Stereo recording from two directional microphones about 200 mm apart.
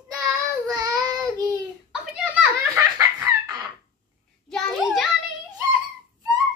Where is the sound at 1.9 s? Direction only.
5° right (ahead or behind).